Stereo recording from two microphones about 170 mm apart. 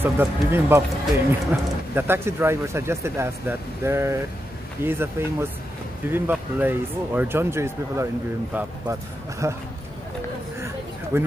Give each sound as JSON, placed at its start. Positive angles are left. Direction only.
{"t": 0.0, "sound": "speech", "side_deg": -15}
{"t": 11.1, "sound": "speech", "side_deg": -15}